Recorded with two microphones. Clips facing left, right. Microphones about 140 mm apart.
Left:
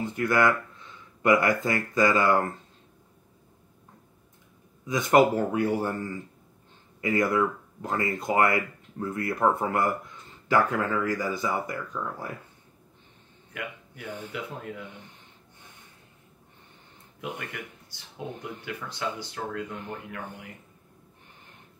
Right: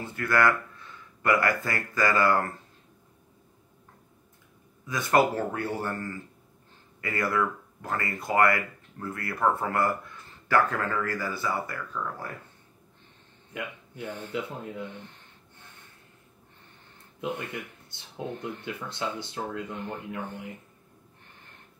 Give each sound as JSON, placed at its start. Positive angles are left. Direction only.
{"t": 0.0, "sound": "speech", "side_deg": 20}
{"t": 4.8, "sound": "speech", "side_deg": 20}
{"t": 13.5, "sound": "a sound", "side_deg": -25}
{"t": 14.0, "sound": "speech", "side_deg": 10}
{"t": 14.3, "sound": "speech", "side_deg": -20}
{"t": 14.9, "sound": "a sound", "side_deg": 15}
{"t": 17.4, "sound": "speech", "side_deg": -25}